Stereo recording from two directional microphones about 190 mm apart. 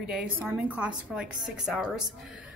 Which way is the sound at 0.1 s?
5° right (ahead or behind).